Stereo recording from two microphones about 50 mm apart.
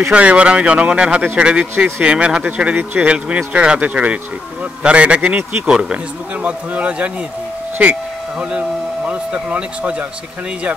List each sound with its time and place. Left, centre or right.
0.1 s speech: right
5.7 s speech: centre
6.4 s speech: right